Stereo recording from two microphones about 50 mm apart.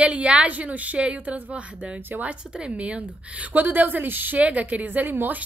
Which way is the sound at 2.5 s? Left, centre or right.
Right.